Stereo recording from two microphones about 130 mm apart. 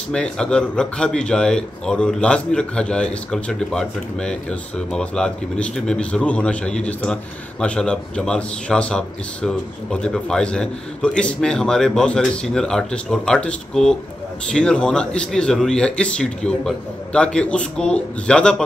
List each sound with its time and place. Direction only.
0.1 s speech: 5° left (ahead or behind)